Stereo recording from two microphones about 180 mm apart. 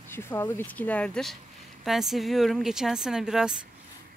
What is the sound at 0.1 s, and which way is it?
Speech, 10° left (ahead or behind).